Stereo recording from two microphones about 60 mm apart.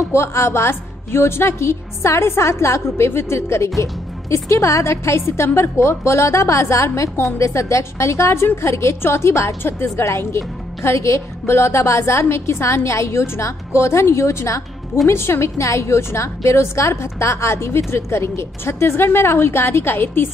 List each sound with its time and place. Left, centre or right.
0.0 s a woman's voice: left
9.6 s a woman's voice: left
15.0 s a woman's voice: left